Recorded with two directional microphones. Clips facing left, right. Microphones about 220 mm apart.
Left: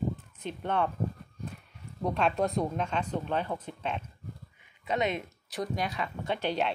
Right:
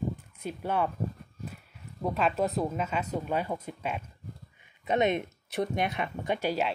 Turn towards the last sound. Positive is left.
turn(degrees=-10)  # may be behind; listen again after turning